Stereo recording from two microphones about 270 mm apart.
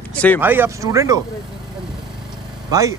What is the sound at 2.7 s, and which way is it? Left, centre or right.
Speech, centre.